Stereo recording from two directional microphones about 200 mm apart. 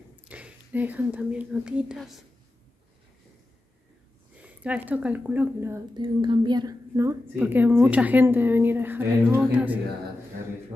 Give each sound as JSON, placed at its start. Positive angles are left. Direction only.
{"t": 0.3, "sound": "speech", "side_deg": -5}
{"t": 4.4, "sound": "speech", "side_deg": -5}
{"t": 5.9, "sound": "a woman's voice", "side_deg": -25}